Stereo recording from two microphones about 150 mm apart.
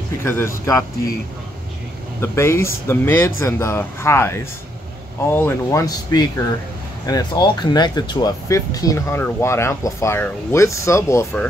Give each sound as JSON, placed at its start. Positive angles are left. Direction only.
{"t": 0.2, "sound": "speech", "side_deg": 15}
{"t": 2.1, "sound": "speech", "side_deg": 15}